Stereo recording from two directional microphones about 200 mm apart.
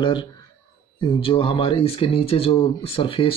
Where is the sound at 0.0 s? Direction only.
25° left (ahead or behind).